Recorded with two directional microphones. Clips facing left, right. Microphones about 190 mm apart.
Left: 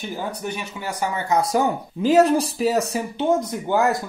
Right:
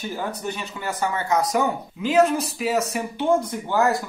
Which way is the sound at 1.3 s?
35° left (ahead or behind).